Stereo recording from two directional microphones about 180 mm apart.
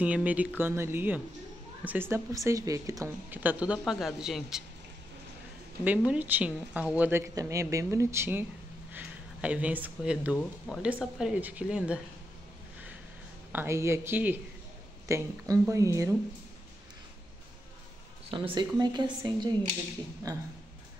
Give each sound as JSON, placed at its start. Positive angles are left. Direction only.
{"t": 0.0, "sound": "speech", "side_deg": -10}
{"t": 5.9, "sound": "speech", "side_deg": -10}
{"t": 13.5, "sound": "speech", "side_deg": -15}
{"t": 18.3, "sound": "a woman's voice", "side_deg": -25}
{"t": 20.3, "sound": "a woman's voice", "side_deg": -20}